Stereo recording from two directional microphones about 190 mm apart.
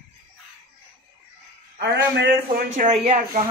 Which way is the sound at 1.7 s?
60° right (ahead or behind).